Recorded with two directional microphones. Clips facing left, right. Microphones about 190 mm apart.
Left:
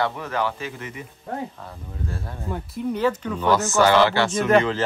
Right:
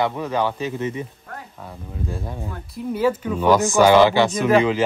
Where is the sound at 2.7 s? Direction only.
5° right (ahead or behind).